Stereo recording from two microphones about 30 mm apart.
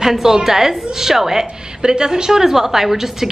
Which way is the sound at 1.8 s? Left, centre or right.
Right.